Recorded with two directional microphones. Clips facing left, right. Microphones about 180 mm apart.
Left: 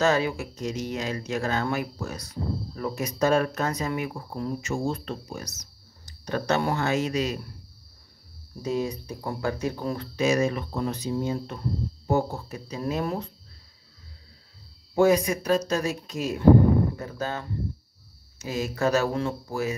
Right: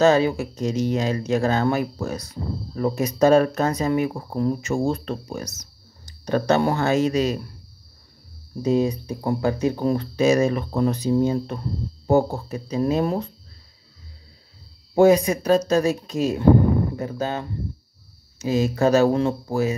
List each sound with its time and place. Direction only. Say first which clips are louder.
0.0 s speech: right 6 dB; 30° right (ahead or behind); by 5.5 s 50° right (ahead or behind)
6.2 s speech: right 6 dB; 35° right (ahead or behind)
8.6 s speech: right 7 dB; 25° right (ahead or behind)
15.0 s speech: right 5 dB; 25° right (ahead or behind)